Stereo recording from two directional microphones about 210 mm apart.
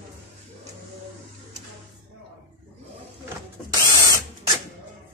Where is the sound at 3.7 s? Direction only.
20° right (ahead or behind).